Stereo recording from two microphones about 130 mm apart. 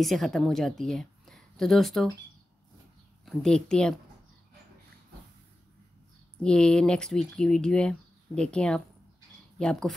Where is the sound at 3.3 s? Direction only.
5° left (ahead or behind).